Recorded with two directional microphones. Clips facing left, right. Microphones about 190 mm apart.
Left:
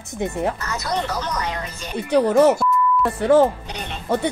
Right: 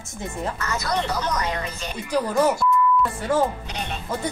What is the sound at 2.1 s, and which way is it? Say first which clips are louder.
Speech: left 6 dB; 60° left (ahead or behind).